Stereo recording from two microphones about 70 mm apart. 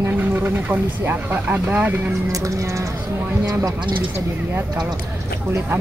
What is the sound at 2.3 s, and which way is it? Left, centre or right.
Speech, right.